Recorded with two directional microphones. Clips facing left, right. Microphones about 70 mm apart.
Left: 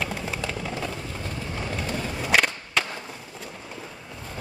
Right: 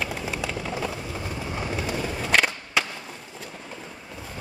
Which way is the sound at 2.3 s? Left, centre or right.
Centre.